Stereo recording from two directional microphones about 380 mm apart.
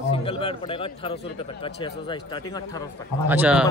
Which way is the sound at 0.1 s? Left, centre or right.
Centre.